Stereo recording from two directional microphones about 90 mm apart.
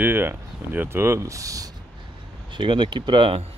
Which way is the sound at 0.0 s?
25° right (ahead or behind).